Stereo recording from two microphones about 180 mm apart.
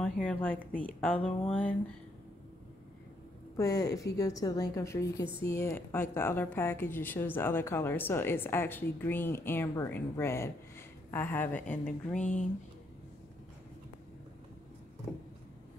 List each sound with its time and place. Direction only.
0.0 s a woman's voice: 5° left (ahead or behind)
3.5 s a woman's voice: 15° left (ahead or behind)
12.2 s speech: 40° left (ahead or behind)